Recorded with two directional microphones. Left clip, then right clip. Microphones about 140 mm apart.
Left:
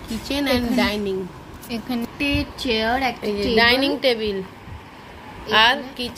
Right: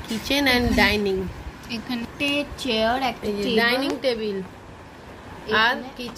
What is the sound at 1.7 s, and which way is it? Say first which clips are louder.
Speech: left 3 dB; 50° left (ahead or behind).